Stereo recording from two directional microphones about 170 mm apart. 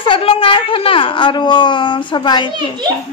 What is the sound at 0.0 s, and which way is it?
Speech, 30° left (ahead or behind).